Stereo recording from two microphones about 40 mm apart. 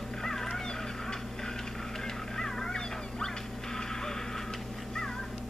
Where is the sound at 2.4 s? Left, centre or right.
Centre.